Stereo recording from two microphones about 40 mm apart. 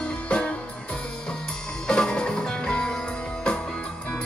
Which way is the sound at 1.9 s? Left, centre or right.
Centre.